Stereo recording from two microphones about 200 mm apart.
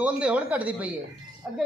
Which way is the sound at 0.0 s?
5° right (ahead or behind).